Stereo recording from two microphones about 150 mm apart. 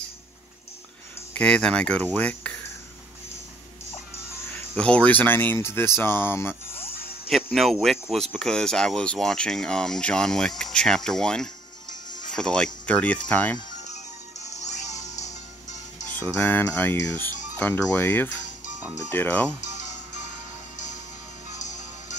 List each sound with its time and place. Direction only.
1.3 s speech: 5° left (ahead or behind)
4.7 s speech: 10° left (ahead or behind)
7.5 s speech: centre (ahead or behind)
14.5 s music: 50° left (ahead or behind)
16.3 s speech: 10° left (ahead or behind)
20.7 s music: 55° left (ahead or behind)